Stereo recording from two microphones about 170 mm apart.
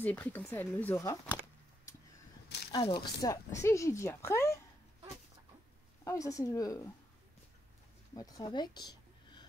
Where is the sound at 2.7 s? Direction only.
25° left (ahead or behind).